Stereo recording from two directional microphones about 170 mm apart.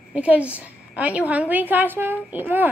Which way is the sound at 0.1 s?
5° right (ahead or behind).